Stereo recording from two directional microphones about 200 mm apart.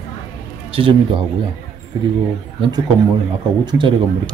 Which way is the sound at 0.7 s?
25° right (ahead or behind).